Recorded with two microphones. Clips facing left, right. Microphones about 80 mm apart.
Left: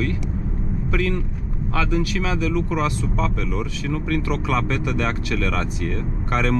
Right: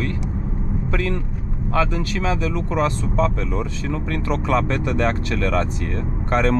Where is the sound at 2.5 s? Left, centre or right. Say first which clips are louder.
Right 1 dB; right.